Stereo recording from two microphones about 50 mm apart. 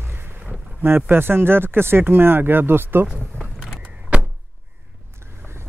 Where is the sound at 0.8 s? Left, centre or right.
Right.